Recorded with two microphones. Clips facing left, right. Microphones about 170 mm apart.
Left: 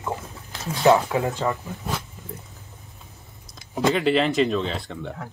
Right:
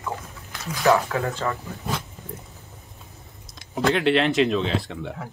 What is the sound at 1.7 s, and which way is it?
Speech, centre (ahead or behind).